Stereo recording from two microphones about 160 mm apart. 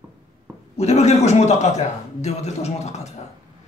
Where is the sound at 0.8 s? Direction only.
40° left (ahead or behind).